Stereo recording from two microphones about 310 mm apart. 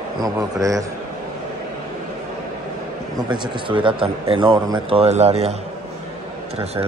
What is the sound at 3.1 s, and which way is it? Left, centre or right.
A man's voice, centre.